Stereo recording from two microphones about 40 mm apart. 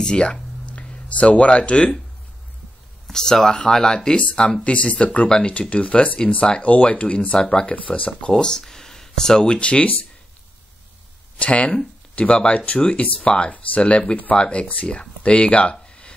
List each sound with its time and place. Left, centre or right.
0.0 s speech: left
3.1 s speech: centre; by 7.2 s left
7.2 s speech: left
8.3 s speech: centre; by 9.9 s left
11.3 s speech: left